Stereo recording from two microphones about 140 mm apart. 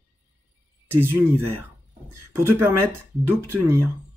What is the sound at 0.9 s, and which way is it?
Speech, 15° right (ahead or behind).